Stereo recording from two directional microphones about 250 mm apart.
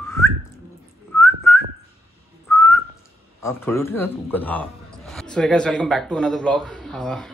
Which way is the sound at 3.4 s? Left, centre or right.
Centre.